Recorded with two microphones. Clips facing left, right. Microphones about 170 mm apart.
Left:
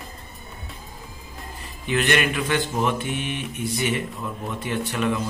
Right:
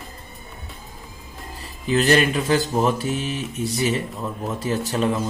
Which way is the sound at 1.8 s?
35° right (ahead or behind).